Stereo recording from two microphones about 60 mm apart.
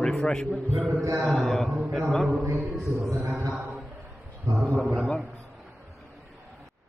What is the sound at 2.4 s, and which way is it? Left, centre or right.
Speech, right.